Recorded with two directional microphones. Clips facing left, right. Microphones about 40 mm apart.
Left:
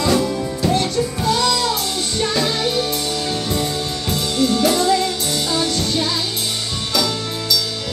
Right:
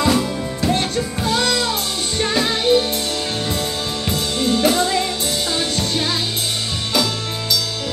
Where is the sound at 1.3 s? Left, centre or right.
Right.